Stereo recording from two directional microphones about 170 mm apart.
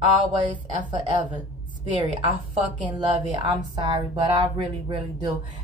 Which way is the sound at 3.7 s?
25° right (ahead or behind).